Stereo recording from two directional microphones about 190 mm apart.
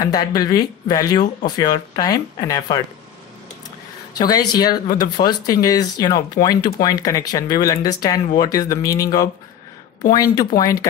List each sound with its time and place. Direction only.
0.1 s speech: 20° left (ahead or behind)
4.2 s speech: 20° left (ahead or behind)